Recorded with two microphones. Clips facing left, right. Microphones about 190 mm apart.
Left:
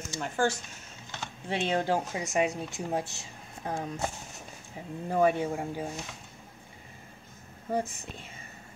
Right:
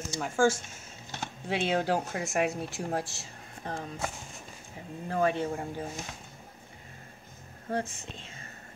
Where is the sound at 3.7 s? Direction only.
15° left (ahead or behind).